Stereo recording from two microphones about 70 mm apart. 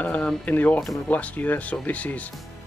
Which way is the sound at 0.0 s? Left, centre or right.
Left.